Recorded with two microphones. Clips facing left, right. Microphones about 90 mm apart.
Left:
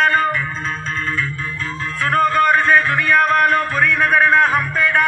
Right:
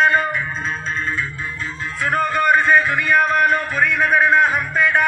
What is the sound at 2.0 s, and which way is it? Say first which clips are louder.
Music: left 3 dB; 10° right (ahead or behind).